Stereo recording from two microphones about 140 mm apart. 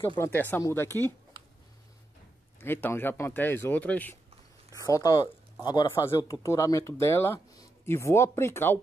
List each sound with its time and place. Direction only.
0.2 s speech: 15° left (ahead or behind)
2.6 s speech: 15° left (ahead or behind)
4.7 s speech: 25° left (ahead or behind)